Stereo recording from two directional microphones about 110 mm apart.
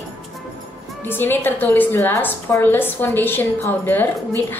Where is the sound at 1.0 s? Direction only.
20° left (ahead or behind).